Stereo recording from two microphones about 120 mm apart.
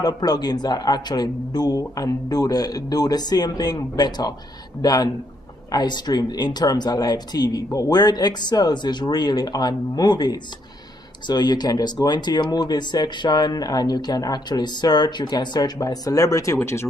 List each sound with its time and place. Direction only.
0.0 s speech: 35° left (ahead or behind)